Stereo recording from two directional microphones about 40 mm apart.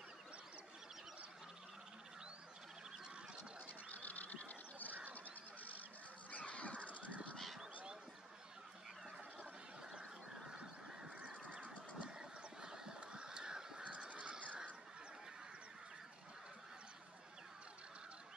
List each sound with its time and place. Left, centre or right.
3.6 s duck: left
6.3 s a sound: left
7.3 s honk: centre
10.5 s goose: right
11.2 s goose: right
12.0 s goose: centre
13.9 s crow: right